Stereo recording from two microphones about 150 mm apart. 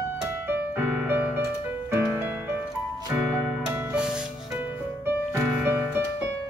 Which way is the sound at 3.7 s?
10° right (ahead or behind).